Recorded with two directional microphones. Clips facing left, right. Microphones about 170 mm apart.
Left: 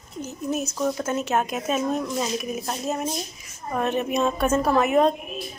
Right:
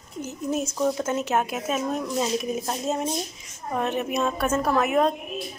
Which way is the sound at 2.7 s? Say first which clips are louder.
Right 1 dB; 20° right (ahead or behind).